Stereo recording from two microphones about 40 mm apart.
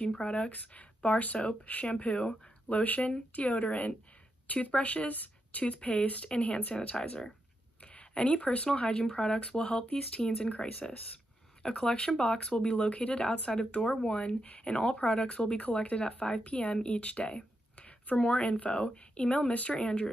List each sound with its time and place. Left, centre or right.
0.1 s speech: left
0.5 s speech: left
7.8 s a sound: left
8.4 s speech: left
9.1 s speech: left
19.8 s speech: left